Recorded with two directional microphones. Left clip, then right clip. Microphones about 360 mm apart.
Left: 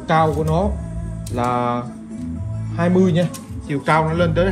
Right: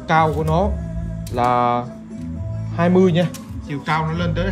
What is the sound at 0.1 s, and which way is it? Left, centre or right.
Speech, centre.